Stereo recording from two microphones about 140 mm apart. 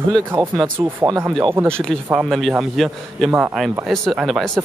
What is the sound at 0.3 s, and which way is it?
Speech, 30° right (ahead or behind).